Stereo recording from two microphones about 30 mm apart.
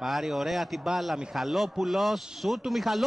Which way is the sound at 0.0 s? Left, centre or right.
Centre.